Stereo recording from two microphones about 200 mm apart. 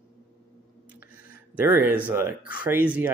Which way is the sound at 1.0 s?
45° left (ahead or behind).